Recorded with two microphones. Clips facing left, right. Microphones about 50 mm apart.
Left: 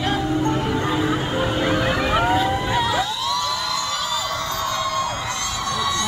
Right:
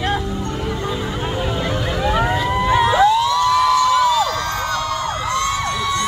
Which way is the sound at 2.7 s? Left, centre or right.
Centre.